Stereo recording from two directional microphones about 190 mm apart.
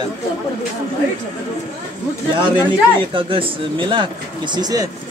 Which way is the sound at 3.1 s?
25° right (ahead or behind).